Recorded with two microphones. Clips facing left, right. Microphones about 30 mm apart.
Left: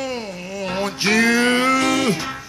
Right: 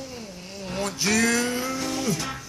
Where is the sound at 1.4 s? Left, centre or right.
Left.